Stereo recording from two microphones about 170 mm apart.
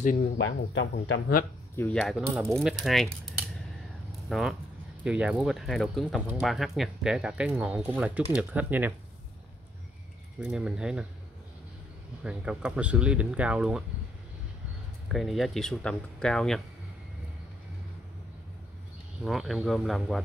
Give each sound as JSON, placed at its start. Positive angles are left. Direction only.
{"t": 0.4, "sound": "speech", "side_deg": 90}
{"t": 1.8, "sound": "speech", "side_deg": 5}
{"t": 4.3, "sound": "speech", "side_deg": 0}
{"t": 10.4, "sound": "speech", "side_deg": -5}
{"t": 12.2, "sound": "speech", "side_deg": -5}
{"t": 15.1, "sound": "speech", "side_deg": 0}
{"t": 19.2, "sound": "speech", "side_deg": 0}